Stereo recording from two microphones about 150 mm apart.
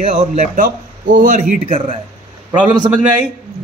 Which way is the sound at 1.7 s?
40° right (ahead or behind).